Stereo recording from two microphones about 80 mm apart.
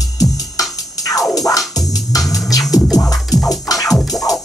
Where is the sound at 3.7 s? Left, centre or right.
Left.